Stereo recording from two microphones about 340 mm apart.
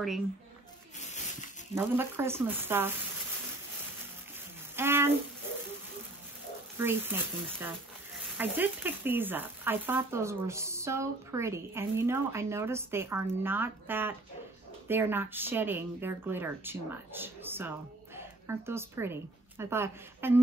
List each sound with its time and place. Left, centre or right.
0.9 s a sound: centre
1.8 s speech: centre
4.7 s speech: centre
6.8 s speech: centre